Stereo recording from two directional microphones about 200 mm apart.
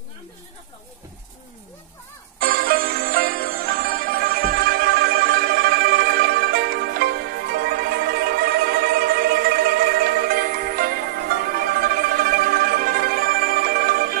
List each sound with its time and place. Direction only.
2.4 s music: 45° right (ahead or behind)